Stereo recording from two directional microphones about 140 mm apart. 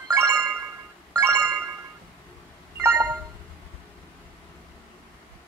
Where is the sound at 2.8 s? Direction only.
15° right (ahead or behind).